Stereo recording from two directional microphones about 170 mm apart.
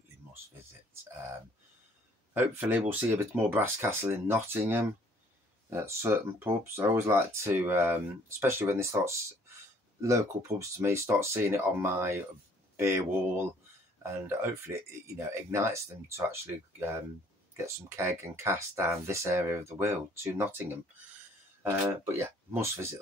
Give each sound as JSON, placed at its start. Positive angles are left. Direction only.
{"t": 2.3, "sound": "speech", "side_deg": -10}
{"t": 14.0, "sound": "speech", "side_deg": -15}
{"t": 22.0, "sound": "speech", "side_deg": -15}